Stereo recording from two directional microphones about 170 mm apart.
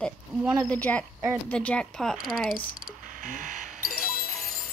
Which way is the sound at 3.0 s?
50° right (ahead or behind).